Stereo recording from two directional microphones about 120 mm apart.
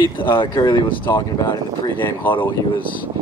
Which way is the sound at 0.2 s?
40° left (ahead or behind).